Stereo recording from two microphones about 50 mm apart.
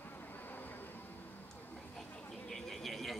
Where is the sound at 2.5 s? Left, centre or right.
Centre.